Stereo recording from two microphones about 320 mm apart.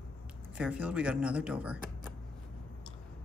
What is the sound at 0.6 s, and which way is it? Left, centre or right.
Speech, centre.